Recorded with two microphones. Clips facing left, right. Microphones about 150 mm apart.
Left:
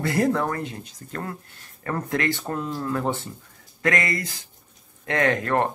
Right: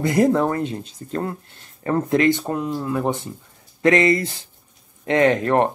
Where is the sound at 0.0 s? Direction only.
20° right (ahead or behind).